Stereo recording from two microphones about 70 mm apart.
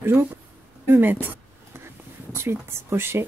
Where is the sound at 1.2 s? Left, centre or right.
Right.